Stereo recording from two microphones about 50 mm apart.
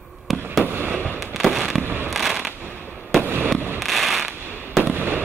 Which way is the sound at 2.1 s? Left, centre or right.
Centre.